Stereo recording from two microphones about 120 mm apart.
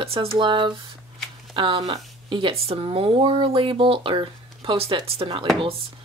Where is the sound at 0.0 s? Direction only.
50° right (ahead or behind).